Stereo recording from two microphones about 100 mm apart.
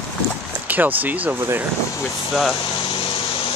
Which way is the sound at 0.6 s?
15° right (ahead or behind).